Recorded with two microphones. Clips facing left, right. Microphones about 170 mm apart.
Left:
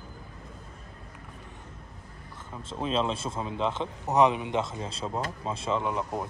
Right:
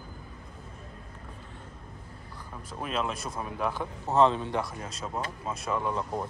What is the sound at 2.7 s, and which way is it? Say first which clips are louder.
A man's voice: left 4 dB; 25° left (ahead or behind).